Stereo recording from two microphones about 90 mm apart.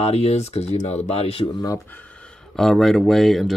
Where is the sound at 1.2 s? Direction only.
90° left.